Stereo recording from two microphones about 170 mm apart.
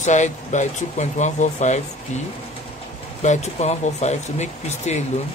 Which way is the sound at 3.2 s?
40° left (ahead or behind).